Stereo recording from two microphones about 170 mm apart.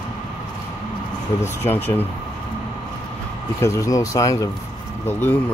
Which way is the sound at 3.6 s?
20° left (ahead or behind).